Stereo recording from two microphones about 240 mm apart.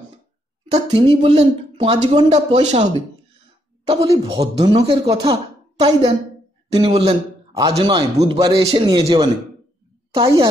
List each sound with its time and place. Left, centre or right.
0.7 s a man's voice: right